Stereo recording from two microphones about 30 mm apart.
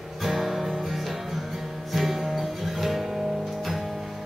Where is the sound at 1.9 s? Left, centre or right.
Centre.